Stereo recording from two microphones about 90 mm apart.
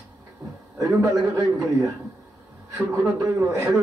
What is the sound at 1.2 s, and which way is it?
Speech, 35° right (ahead or behind).